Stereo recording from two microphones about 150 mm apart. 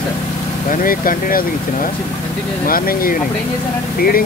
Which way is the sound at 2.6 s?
75° left (ahead or behind).